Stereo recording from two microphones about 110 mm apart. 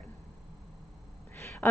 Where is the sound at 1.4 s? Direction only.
25° left (ahead or behind).